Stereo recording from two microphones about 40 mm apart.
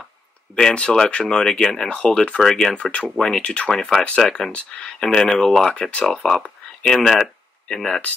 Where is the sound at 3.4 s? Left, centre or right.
Left.